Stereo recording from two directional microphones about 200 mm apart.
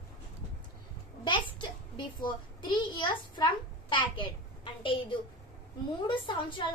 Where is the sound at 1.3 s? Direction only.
25° left (ahead or behind).